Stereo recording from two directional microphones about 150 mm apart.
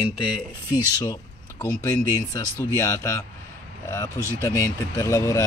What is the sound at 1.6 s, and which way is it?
Speech, 25° left (ahead or behind).